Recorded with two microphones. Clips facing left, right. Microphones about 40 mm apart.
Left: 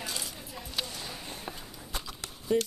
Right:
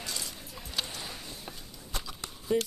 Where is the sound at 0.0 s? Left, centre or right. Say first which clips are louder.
Left 1 dB; centre.